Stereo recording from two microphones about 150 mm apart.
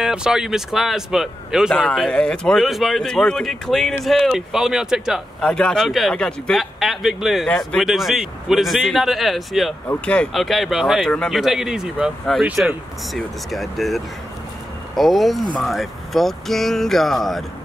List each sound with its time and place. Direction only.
0.0 s speech: 5° right (ahead or behind)